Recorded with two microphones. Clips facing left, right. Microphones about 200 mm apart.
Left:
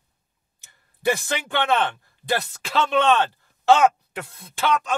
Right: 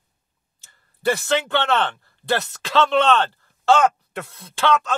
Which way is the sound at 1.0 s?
15° left (ahead or behind).